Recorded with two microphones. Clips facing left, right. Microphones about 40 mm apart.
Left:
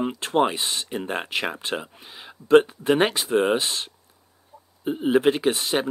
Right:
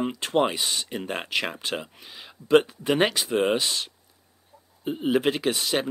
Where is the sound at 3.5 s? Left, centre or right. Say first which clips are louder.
Left 1 dB; left.